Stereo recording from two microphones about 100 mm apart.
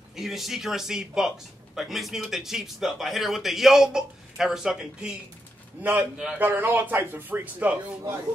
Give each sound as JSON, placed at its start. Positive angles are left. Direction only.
{"t": 0.1, "sound": "a man's voice", "side_deg": 0}
{"t": 5.8, "sound": "a man's voice", "side_deg": -15}